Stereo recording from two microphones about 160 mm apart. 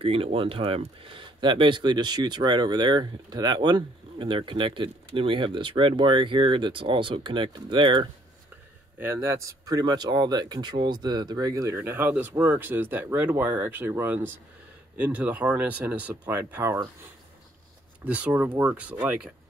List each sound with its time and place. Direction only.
0.0 s speech: 35° right (ahead or behind)
8.9 s speech: 15° right (ahead or behind)
18.0 s speech: 10° right (ahead or behind)